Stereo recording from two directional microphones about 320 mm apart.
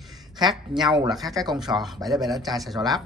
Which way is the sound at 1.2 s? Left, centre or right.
Centre.